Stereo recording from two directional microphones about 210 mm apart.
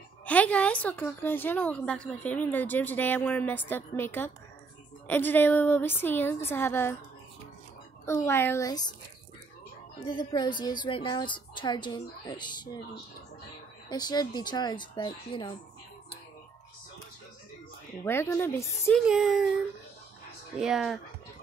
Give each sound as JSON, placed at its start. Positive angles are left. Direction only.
{"t": 0.2, "sound": "a woman's voice", "side_deg": 5}
{"t": 8.0, "sound": "a woman's voice", "side_deg": 15}
{"t": 10.0, "sound": "a woman's voice", "side_deg": 20}
{"t": 13.8, "sound": "a woman's voice", "side_deg": 20}
{"t": 18.0, "sound": "a woman's voice", "side_deg": 10}
{"t": 18.9, "sound": "speech", "side_deg": 0}
{"t": 20.5, "sound": "speech", "side_deg": 0}